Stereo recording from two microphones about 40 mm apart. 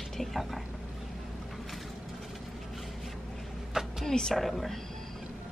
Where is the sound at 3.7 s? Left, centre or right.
Centre.